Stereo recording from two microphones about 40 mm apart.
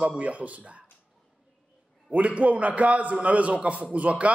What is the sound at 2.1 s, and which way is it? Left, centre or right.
A man's voice, right.